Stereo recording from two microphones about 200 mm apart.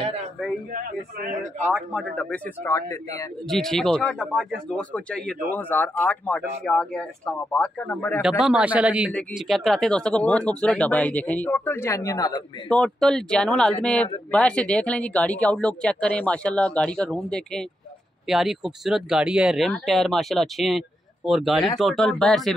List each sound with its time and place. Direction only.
0.7 s a man's voice: 45° right (ahead or behind)
1.7 s speech: centre (ahead or behind)
3.4 s speech: centre (ahead or behind)
8.2 s speech: centre (ahead or behind); by 12.4 s 20° left (ahead or behind)
12.6 s speech: 5° left (ahead or behind)